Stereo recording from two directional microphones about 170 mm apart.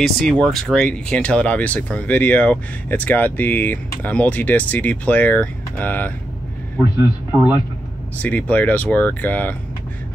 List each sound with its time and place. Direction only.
0.0 s speech: centre (ahead or behind)
7.0 s speech: 5° right (ahead or behind)
8.2 s speech: 10° left (ahead or behind)